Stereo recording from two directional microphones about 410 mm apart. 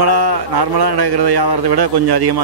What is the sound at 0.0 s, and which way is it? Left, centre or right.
Speech, right.